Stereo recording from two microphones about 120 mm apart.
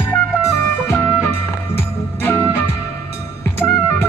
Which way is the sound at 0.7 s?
20° left (ahead or behind).